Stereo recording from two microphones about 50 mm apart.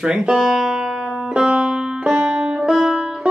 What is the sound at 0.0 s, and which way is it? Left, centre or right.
Music, centre.